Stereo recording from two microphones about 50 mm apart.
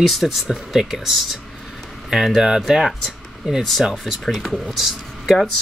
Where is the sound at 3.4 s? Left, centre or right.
Centre.